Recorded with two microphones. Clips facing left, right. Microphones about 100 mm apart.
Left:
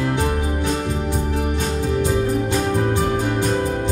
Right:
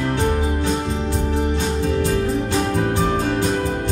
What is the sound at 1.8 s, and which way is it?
Music, 15° left (ahead or behind).